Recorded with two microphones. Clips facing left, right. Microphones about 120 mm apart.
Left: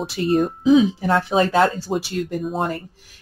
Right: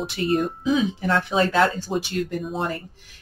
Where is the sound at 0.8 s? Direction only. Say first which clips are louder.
Left 4 dB; 35° left (ahead or behind).